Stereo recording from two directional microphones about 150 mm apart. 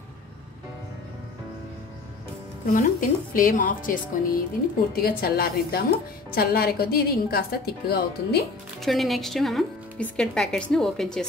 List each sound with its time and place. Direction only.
2.6 s a woman's voice: 65° left (ahead or behind)
5.0 s a woman's voice: 90° left
8.8 s speech: centre (ahead or behind)